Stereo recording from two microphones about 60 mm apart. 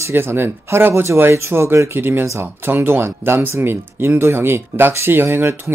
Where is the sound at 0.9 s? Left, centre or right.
Right.